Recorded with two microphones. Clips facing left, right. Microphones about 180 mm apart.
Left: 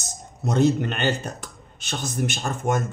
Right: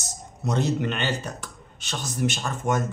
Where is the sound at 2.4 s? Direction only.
50° left (ahead or behind).